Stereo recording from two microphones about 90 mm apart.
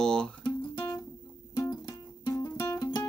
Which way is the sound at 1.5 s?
45° left (ahead or behind).